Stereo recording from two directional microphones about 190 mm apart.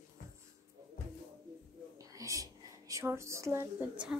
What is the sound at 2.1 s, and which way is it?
A woman's voice, 15° right (ahead or behind).